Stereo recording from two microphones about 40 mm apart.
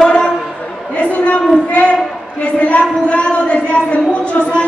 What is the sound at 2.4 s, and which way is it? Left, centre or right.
Speech, left.